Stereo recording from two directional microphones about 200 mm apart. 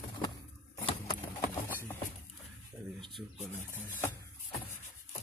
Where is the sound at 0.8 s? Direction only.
20° left (ahead or behind).